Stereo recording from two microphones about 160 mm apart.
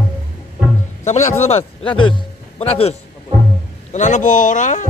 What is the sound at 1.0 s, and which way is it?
Music, 45° left (ahead or behind).